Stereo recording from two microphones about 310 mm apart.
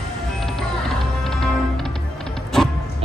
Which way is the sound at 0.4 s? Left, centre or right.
Centre.